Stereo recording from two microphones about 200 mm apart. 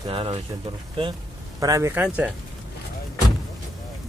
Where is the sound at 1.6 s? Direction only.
15° right (ahead or behind).